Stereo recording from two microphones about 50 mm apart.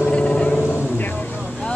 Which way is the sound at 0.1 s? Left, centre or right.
Left.